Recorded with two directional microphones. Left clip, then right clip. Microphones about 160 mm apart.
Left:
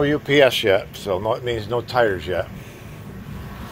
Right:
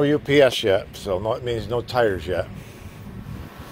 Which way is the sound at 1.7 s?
55° right (ahead or behind).